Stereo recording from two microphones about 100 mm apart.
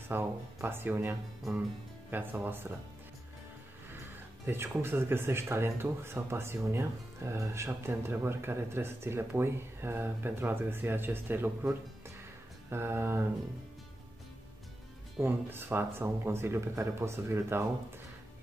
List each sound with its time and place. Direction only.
0.1 s speech: 25° right (ahead or behind)
4.5 s speech: 25° right (ahead or behind)
15.2 s speech: 20° right (ahead or behind)